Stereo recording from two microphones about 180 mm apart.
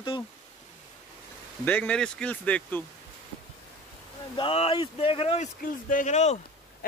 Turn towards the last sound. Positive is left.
turn(degrees=40)  # may be behind; listen again after turning